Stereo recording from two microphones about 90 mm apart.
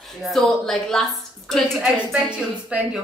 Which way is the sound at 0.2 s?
Centre (ahead or behind).